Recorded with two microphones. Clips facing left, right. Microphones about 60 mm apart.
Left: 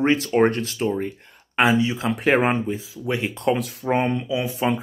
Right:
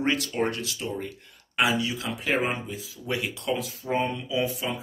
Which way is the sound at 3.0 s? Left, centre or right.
Left.